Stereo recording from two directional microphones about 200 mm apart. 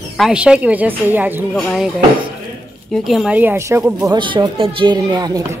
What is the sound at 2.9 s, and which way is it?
A woman's voice, centre (ahead or behind).